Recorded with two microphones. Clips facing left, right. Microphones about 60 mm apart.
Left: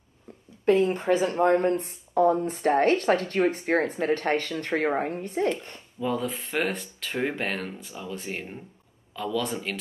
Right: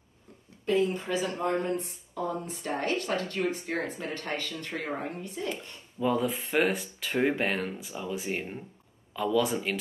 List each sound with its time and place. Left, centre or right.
0.7 s speech: left
5.9 s speech: centre